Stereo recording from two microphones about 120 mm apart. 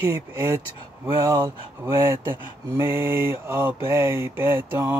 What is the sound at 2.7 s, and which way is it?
Mantra, 20° right (ahead or behind).